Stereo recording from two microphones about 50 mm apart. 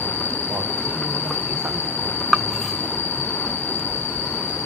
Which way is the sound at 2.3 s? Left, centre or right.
Centre.